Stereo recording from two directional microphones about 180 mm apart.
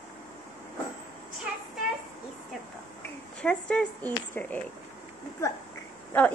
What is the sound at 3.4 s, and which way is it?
Speech, 5° left (ahead or behind).